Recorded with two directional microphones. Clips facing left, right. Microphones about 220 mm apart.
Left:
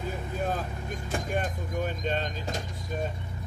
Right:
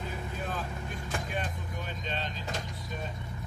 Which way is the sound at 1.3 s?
50° left (ahead or behind).